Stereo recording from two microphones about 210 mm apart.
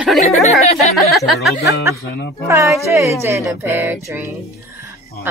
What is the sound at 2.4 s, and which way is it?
Speech, 15° right (ahead or behind).